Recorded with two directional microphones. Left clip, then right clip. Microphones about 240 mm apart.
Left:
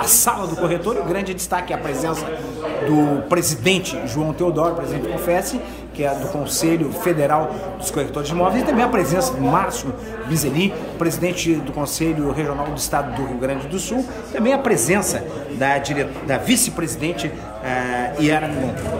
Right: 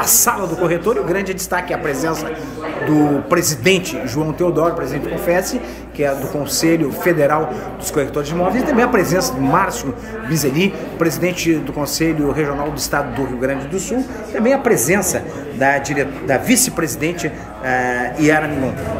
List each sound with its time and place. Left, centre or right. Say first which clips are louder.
0.0 s a man's voice: right 3 dB; centre